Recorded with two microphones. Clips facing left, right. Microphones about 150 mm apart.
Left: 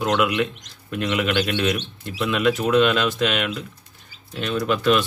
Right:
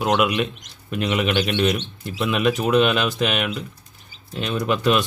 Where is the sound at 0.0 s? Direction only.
15° right (ahead or behind).